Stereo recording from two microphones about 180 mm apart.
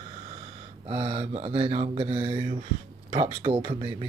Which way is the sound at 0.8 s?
30° right (ahead or behind).